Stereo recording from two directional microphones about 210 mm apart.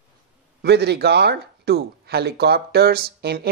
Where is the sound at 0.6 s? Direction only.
50° right (ahead or behind).